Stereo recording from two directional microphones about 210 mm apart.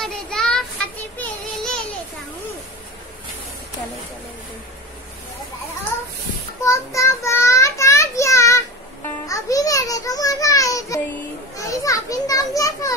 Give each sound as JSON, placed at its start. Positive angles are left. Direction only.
{"t": 0.0, "sound": "child singing", "side_deg": 5}
{"t": 6.6, "sound": "child singing", "side_deg": 15}
{"t": 9.3, "sound": "a sound", "side_deg": 15}
{"t": 11.5, "sound": "children playing", "side_deg": 15}